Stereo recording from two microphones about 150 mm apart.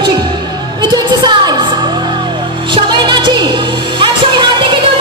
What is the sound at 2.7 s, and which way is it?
Music, 30° right (ahead or behind).